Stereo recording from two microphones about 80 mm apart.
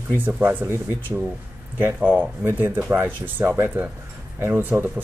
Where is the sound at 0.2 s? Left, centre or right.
Right.